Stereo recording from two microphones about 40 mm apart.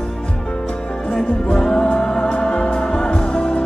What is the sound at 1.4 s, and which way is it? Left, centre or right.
Music, centre.